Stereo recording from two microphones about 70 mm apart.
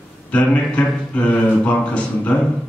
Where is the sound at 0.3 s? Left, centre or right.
Left.